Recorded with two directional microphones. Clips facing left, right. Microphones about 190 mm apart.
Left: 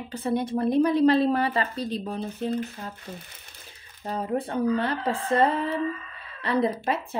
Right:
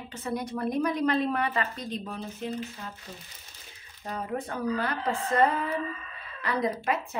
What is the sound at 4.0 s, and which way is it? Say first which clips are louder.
A woman's voice: left 5 dB; 30° left (ahead or behind).